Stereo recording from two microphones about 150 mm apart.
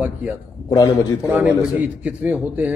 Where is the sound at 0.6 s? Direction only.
25° left (ahead or behind).